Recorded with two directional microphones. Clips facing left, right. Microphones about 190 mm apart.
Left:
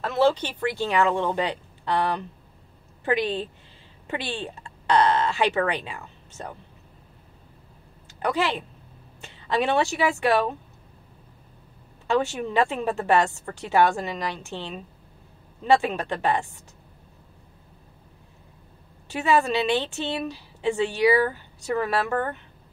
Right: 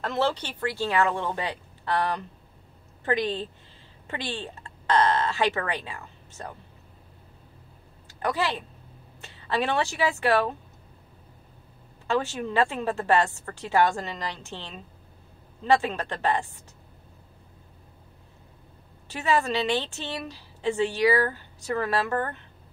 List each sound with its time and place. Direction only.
0.0 s a woman's voice: 10° left (ahead or behind)
8.2 s a woman's voice: 15° left (ahead or behind)
12.1 s a woman's voice: 15° left (ahead or behind)
19.0 s a woman's voice: 15° left (ahead or behind)